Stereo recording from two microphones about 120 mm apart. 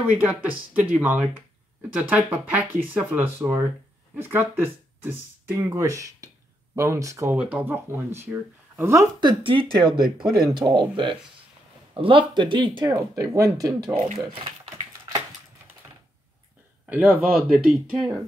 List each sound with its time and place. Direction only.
0.2 s speech: 10° right (ahead or behind)
7.3 s speech: 10° right (ahead or behind)
9.2 s speech: 40° right (ahead or behind)
10.0 s speech: 5° right (ahead or behind)
10.4 s speech: 40° right (ahead or behind)
14.3 s speech: 50° right (ahead or behind)
16.8 s speech: 10° right (ahead or behind)